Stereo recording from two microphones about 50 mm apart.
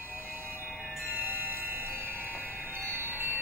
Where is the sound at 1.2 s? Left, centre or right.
Right.